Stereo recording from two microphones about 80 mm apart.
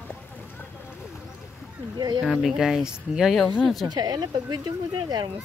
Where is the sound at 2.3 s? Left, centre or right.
Centre.